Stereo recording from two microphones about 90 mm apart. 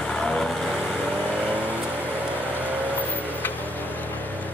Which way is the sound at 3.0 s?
20° right (ahead or behind).